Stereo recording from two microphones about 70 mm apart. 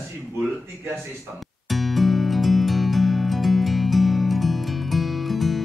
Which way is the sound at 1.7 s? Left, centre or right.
Centre.